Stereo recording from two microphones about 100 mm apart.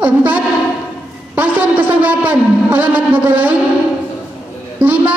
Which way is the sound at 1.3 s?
15° right (ahead or behind).